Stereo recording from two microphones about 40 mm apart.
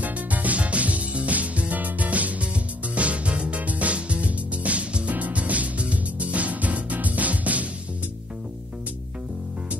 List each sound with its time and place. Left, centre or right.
0.0 s music: right